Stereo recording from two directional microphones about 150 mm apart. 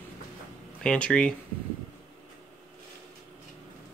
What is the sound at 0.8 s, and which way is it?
Speech, 5° left (ahead or behind).